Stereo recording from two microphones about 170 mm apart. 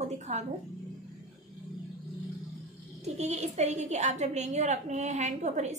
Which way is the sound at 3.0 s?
40° right (ahead or behind).